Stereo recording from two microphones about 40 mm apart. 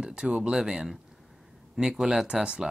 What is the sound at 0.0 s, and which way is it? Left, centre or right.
Speech, right.